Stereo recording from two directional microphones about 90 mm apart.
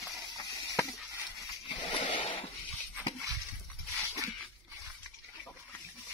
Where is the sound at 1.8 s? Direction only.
70° left (ahead or behind).